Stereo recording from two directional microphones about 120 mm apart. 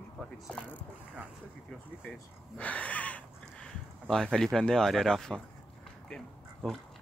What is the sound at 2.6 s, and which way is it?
Speech, 10° left (ahead or behind).